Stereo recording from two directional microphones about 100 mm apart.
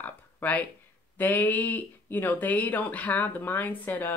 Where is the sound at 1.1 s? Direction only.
15° left (ahead or behind).